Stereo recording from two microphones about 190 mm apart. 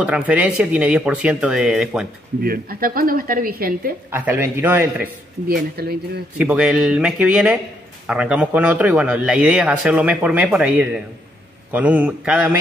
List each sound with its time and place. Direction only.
0.0 s speech: 5° right (ahead or behind)
2.4 s speech: 50° right (ahead or behind)
4.1 s a man's voice: 10° right (ahead or behind)
5.5 s speech: 55° right (ahead or behind)
6.3 s a man's voice: 5° right (ahead or behind)